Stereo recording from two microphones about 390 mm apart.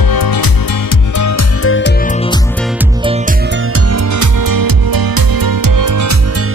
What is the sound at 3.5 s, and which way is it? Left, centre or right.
Music, right.